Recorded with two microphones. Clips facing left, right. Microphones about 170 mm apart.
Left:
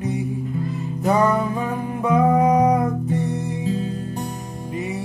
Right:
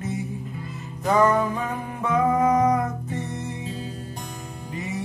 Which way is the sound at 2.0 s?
15° left (ahead or behind).